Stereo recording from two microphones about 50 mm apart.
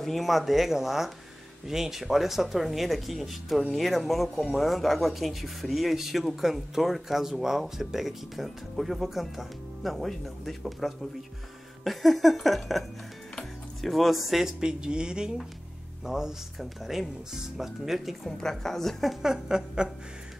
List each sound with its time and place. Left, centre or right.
0.0 s speech: centre
13.4 s music: centre
14.6 s speech: centre
18.4 s a woman's voice: centre
19.2 s speech: centre